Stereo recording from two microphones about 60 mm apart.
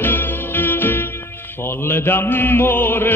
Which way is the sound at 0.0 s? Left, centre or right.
Left.